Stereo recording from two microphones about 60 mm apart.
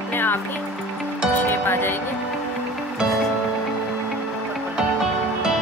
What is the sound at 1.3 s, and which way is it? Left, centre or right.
Music, left.